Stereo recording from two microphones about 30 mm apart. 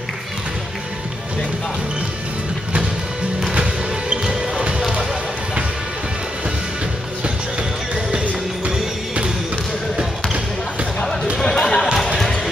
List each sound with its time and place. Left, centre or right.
4.2 s basketball bounce: right
7.9 s music: right
11.4 s basketball bounce: left